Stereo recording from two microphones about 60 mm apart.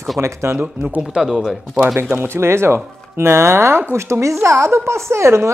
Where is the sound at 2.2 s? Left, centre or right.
Right.